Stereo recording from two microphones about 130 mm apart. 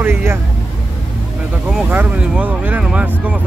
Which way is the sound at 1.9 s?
10° right (ahead or behind).